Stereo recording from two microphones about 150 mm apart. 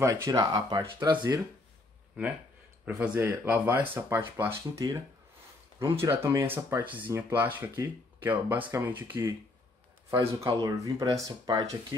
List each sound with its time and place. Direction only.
0.0 s speech: 20° right (ahead or behind)
3.0 s speech: 10° right (ahead or behind)
10.4 s speech: 20° right (ahead or behind)